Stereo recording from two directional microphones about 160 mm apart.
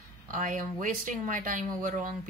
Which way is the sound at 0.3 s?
55° right (ahead or behind).